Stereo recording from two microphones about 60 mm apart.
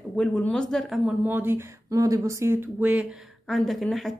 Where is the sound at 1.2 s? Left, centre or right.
Right.